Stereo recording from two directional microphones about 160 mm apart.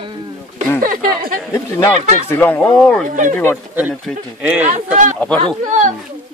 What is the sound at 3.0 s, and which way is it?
Speech, 55° right (ahead or behind).